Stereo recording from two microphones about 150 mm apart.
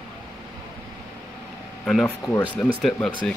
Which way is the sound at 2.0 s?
15° left (ahead or behind).